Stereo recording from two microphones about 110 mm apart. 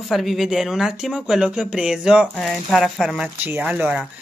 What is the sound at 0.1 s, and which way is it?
Speech, centre (ahead or behind).